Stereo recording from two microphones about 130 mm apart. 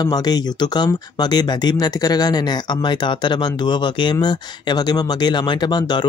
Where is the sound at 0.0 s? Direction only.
30° left (ahead or behind).